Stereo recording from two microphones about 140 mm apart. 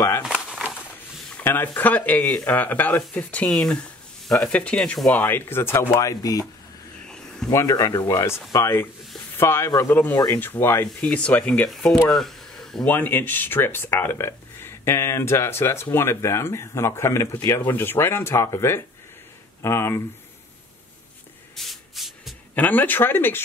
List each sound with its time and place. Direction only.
0.3 s a sound: 5° right (ahead or behind)
1.3 s speech: 15° left (ahead or behind)
7.4 s speech: 25° left (ahead or behind)
10.1 s speech: 30° left (ahead or behind)
10.4 s speech: 15° left (ahead or behind)
12.9 s speech: 15° left (ahead or behind)
21.5 s spray: centre (ahead or behind)
22.6 s speech: 10° left (ahead or behind)